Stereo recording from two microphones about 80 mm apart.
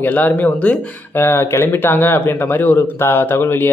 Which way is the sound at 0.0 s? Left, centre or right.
Left.